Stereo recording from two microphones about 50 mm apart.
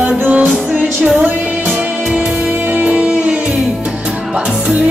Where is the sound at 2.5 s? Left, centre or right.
Right.